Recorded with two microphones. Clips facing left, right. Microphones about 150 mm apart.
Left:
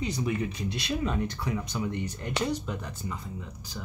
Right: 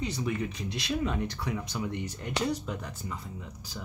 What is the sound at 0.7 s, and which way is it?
Speech, centre (ahead or behind).